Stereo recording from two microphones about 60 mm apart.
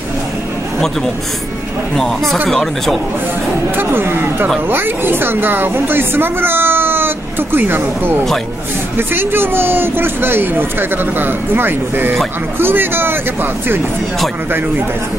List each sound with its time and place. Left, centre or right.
2.4 s speech: centre
3.7 s speech: right